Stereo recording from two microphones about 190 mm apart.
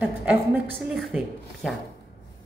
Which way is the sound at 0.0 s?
5° right (ahead or behind).